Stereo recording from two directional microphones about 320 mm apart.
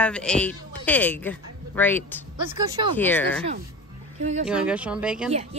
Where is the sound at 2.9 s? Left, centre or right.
Centre.